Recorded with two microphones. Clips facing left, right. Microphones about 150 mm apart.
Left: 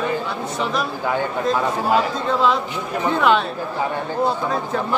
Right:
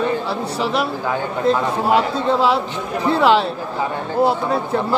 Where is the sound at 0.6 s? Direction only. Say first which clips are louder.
Right 2 dB; 30° right (ahead or behind).